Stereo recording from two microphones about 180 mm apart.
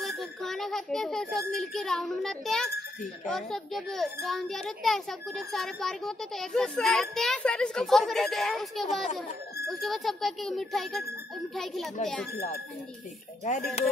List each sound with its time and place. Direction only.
0.0 s a child's voice: centre (ahead or behind)
13.8 s speech: 40° left (ahead or behind)